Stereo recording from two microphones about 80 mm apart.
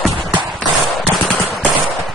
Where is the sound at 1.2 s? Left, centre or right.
Centre.